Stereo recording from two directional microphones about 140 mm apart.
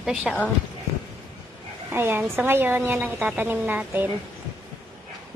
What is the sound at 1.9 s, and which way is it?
Speech, 15° right (ahead or behind).